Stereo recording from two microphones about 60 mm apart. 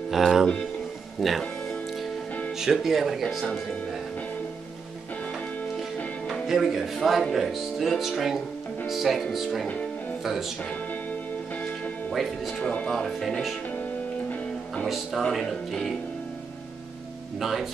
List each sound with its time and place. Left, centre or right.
0.1 s speech: centre
2.6 s speech: centre
6.4 s speech: centre
12.8 s speech: centre
15.2 s speech: centre
17.4 s speech: centre